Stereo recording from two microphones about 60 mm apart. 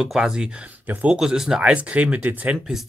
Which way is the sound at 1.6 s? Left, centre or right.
Right.